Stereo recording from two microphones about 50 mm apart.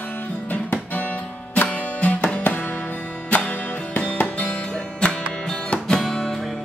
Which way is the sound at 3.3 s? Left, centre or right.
Left.